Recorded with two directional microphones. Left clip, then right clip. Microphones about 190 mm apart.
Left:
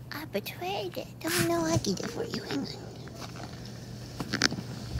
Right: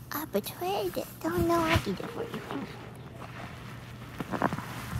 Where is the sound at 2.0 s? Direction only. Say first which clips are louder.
Left 2 dB; 30° left (ahead or behind).